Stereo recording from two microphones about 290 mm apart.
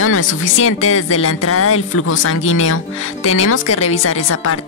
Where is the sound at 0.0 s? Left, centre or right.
Left.